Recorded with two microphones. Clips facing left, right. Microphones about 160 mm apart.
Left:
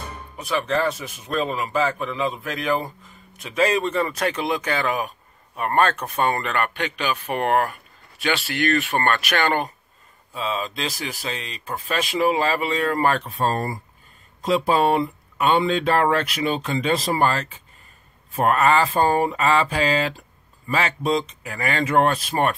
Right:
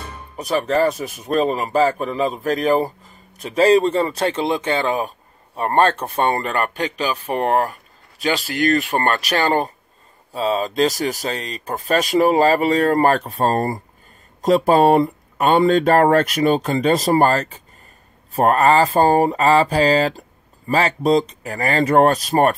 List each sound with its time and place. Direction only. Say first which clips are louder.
0.4 s speech: right 5 dB; 40° right (ahead or behind)